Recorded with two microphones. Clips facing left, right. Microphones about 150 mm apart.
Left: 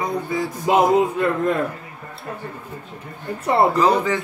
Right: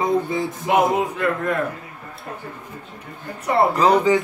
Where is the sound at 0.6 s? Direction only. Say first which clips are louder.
Left 3 dB; 25° left (ahead or behind).